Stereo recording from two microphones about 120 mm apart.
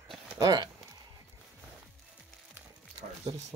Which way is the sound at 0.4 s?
35° right (ahead or behind).